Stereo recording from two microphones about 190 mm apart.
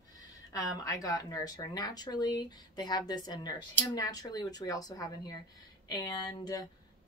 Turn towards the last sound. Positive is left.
turn(degrees=20)  # may be behind; listen again after turning